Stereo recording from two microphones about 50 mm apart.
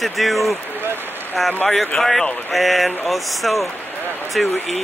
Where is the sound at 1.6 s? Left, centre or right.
Centre.